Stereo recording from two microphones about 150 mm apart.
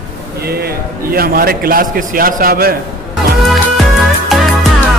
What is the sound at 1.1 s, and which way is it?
A man's voice, 80° right.